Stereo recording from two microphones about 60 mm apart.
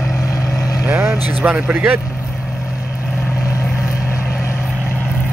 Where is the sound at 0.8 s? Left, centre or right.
Right.